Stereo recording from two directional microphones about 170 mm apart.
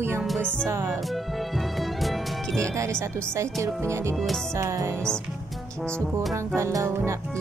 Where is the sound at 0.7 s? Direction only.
15° right (ahead or behind).